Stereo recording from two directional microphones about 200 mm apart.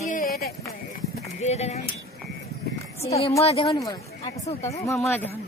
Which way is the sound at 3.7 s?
15° left (ahead or behind).